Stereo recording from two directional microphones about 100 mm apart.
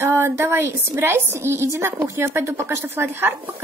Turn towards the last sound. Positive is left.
turn(degrees=-20)  # may be behind; listen again after turning